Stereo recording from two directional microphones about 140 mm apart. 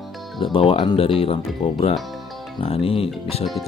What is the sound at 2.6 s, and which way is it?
Music, 45° left (ahead or behind).